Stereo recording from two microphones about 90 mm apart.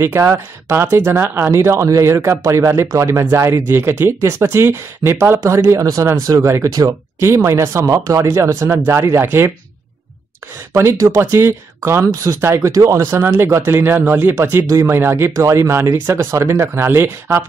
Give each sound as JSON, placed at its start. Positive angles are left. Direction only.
{"t": 0.0, "sound": "speech", "side_deg": -30}
{"t": 7.2, "sound": "speech", "side_deg": -30}
{"t": 10.7, "sound": "speech", "side_deg": -35}